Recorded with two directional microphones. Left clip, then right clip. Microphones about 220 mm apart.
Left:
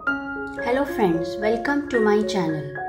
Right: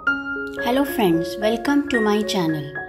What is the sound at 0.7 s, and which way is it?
Speech, 25° right (ahead or behind).